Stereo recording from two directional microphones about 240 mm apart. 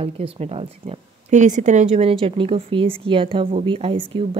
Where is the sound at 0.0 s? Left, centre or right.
Right.